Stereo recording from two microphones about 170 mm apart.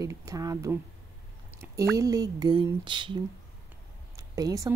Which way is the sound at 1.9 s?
20° right (ahead or behind).